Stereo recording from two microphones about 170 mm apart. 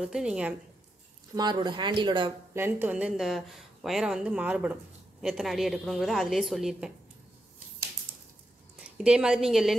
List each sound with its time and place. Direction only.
0.0 s a woman's voice: 5° right (ahead or behind)
1.3 s speech: 25° right (ahead or behind)
2.5 s a woman's voice: 10° right (ahead or behind)
8.9 s a woman's voice: 5° right (ahead or behind)